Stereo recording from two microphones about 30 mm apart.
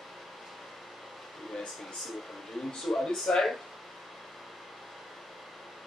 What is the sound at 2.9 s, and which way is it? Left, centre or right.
Speech, centre.